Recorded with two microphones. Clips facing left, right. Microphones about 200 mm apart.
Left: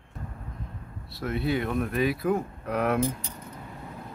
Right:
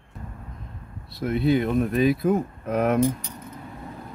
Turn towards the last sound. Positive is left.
turn(degrees=-20)  # may be behind; listen again after turning